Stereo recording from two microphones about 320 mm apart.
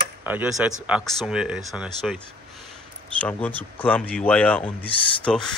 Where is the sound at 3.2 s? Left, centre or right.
Centre.